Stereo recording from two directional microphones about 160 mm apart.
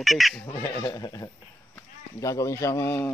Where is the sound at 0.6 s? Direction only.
20° left (ahead or behind).